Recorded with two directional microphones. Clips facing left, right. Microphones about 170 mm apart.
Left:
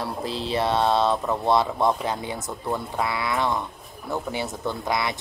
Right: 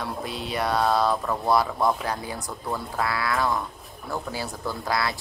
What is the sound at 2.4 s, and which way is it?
Speech, centre (ahead or behind).